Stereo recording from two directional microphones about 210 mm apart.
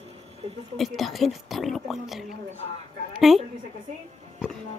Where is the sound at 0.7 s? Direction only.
Centre (ahead or behind).